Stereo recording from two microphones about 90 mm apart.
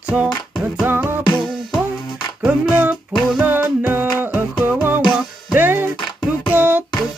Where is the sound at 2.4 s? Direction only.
15° right (ahead or behind).